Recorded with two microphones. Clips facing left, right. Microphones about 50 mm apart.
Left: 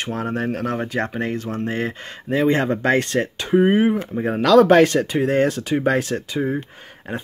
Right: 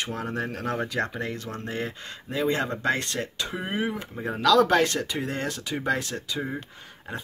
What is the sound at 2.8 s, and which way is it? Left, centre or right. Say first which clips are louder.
Speech: left 7 dB; left.